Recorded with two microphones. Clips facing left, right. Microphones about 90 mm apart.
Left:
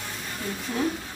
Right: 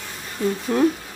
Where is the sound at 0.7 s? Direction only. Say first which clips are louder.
Right 9 dB; 55° right (ahead or behind).